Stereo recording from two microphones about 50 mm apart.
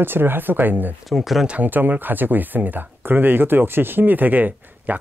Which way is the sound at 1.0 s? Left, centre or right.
Centre.